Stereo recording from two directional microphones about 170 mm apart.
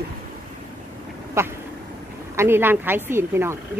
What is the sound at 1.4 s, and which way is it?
A woman's voice, 15° right (ahead or behind).